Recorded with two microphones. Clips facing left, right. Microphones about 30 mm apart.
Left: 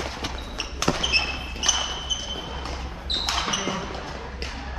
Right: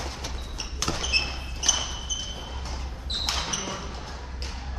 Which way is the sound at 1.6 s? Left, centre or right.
Left.